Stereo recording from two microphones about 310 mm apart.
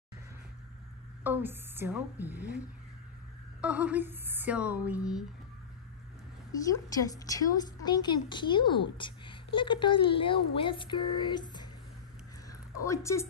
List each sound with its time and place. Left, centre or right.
1.2 s speech: centre
3.6 s speech: centre
6.7 s a woman's voice: centre
12.8 s a woman's voice: centre